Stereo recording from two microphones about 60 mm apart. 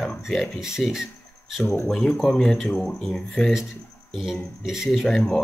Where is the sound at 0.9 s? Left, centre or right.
Centre.